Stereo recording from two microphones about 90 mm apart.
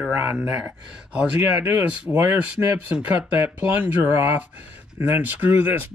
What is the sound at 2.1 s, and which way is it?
Speech, 30° right (ahead or behind).